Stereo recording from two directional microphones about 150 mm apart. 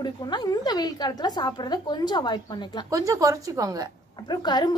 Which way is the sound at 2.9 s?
20° right (ahead or behind).